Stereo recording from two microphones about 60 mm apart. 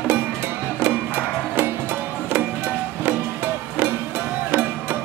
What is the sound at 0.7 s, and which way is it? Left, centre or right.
Music, right.